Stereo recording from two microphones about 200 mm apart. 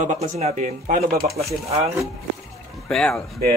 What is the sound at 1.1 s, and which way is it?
Speech, 45° right (ahead or behind).